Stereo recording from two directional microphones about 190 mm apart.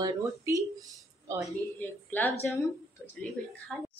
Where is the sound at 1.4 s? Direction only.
10° left (ahead or behind).